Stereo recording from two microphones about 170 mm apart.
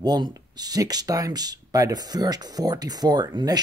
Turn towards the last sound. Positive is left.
turn(degrees=-25)  # may be behind; listen again after turning